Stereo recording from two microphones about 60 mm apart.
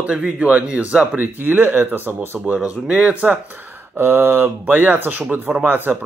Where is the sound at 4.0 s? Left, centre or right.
Right.